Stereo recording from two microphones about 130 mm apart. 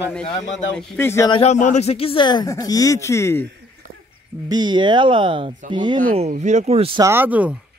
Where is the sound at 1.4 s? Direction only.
65° left (ahead or behind); by 3.5 s 20° left (ahead or behind).